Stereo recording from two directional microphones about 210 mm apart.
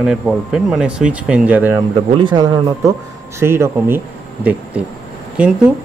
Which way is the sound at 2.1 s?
20° right (ahead or behind).